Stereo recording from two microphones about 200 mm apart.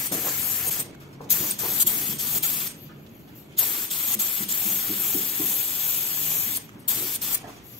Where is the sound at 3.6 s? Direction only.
Centre (ahead or behind).